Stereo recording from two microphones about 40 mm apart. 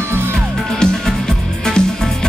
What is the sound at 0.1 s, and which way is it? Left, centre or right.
Music, right.